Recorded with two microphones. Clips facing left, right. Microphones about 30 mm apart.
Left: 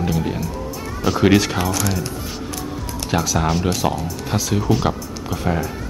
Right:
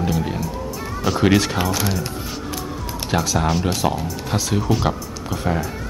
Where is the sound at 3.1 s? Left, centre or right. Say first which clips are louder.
Even; centre.